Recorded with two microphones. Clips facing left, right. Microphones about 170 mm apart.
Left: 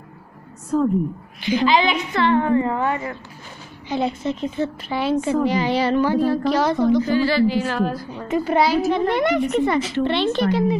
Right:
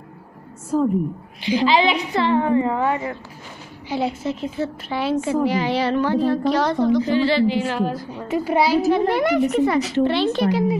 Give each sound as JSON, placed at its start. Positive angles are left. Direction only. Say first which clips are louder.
{"t": 0.7, "sound": "a woman's voice", "louder": "even", "side_deg": -5}
{"t": 1.4, "sound": "a woman's voice", "louder": "even", "side_deg": -30}
{"t": 3.9, "sound": "a woman's voice", "louder": "left 1 dB", "side_deg": -5}
{"t": 7.0, "sound": "a woman's voice", "louder": "even", "side_deg": -25}